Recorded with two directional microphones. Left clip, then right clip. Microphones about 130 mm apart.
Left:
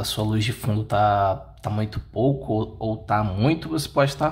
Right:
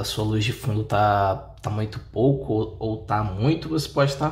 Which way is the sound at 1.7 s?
15° left (ahead or behind).